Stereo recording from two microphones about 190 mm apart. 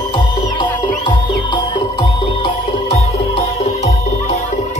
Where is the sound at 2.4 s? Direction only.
30° left (ahead or behind).